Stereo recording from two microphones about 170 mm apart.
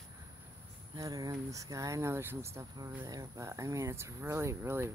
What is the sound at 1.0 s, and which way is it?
Speech, 20° right (ahead or behind).